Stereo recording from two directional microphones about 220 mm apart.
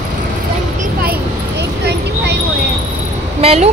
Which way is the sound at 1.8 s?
50° right (ahead or behind).